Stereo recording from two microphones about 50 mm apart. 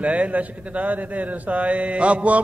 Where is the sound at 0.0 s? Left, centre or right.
Right.